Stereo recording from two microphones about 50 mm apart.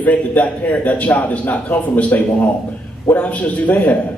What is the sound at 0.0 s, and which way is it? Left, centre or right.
A man's voice, left.